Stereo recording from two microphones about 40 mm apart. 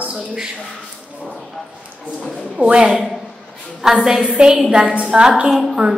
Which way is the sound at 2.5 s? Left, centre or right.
Right.